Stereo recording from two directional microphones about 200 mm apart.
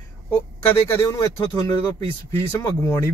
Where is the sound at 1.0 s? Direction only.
20° left (ahead or behind).